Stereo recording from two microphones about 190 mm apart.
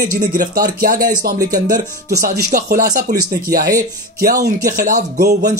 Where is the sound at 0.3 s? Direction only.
50° right (ahead or behind).